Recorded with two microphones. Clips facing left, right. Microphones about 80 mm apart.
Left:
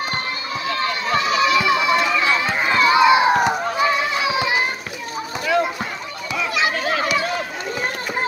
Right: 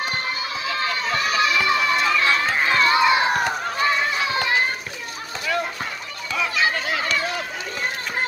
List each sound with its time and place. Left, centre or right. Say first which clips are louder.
1.0 s run: left 4 dB; centre
3.8 s children playing: left 1 dB; centre
7.0 s run: left 4 dB; centre